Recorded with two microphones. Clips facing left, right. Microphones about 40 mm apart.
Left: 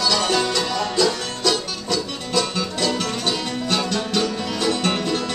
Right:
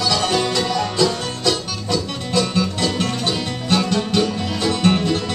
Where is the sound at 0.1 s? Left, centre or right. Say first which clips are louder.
Right 1 dB; centre.